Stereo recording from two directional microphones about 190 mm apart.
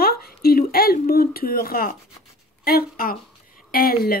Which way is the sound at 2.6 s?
50° left (ahead or behind).